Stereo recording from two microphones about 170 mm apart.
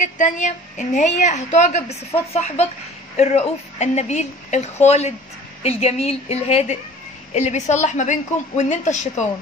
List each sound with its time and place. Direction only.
0.0 s a woman's voice: 45° left (ahead or behind)